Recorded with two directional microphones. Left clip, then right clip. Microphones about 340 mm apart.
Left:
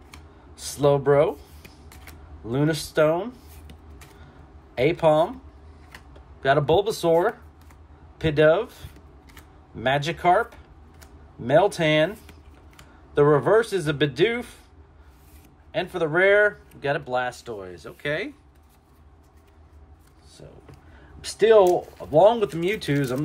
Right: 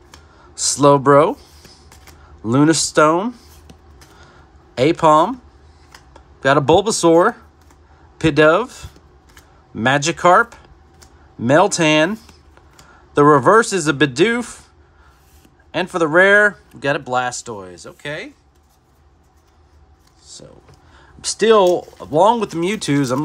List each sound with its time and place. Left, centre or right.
0.6 s speech: centre
4.7 s speech: centre
6.4 s speech: centre
8.2 s speech: centre
9.8 s speech: right
11.4 s speech: right
13.1 s speech: right
15.7 s speech: centre
20.3 s a sound: centre
21.2 s speech: centre